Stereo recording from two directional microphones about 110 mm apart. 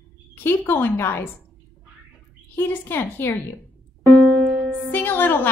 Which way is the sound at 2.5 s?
20° left (ahead or behind).